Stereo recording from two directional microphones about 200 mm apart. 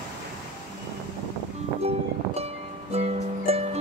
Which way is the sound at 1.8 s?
30° right (ahead or behind).